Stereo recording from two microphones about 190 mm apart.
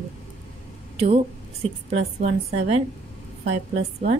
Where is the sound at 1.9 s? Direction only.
35° right (ahead or behind).